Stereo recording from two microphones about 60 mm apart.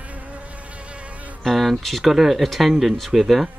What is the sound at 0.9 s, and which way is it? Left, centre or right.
Insect, right.